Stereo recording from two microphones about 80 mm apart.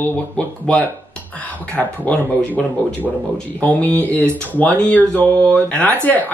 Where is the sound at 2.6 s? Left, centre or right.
Centre.